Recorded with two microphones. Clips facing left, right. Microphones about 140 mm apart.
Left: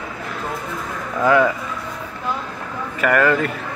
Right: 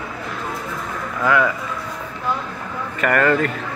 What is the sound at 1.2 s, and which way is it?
Speech, 30° left (ahead or behind).